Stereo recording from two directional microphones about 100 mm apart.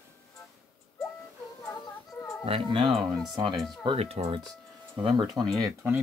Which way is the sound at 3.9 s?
90° right.